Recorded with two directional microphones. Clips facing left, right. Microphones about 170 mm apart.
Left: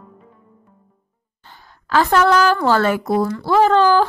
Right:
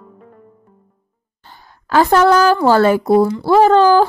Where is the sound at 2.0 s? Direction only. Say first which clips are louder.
Right 4 dB; 35° right (ahead or behind).